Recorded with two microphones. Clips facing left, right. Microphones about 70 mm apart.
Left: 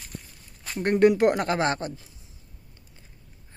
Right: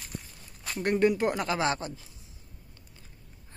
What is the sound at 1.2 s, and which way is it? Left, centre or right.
Speech, left.